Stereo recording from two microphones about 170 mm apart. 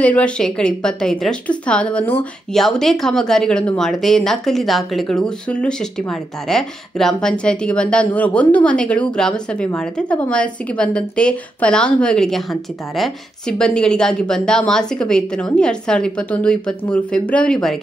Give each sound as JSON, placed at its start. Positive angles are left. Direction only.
{"t": 0.0, "sound": "a woman's voice", "side_deg": 5}